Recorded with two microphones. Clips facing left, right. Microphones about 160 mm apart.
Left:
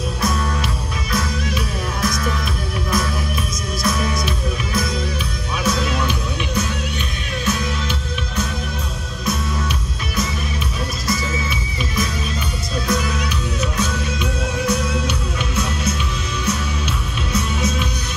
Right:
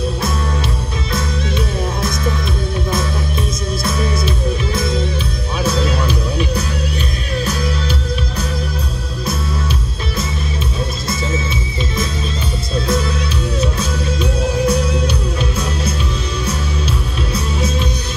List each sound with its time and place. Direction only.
1.1 s music: 25° right (ahead or behind)
3.8 s music: 30° right (ahead or behind)
5.6 s music: 30° right (ahead or behind)
12.7 s music: 30° right (ahead or behind)